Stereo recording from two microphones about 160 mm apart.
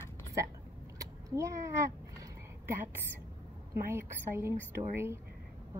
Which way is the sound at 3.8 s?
15° right (ahead or behind).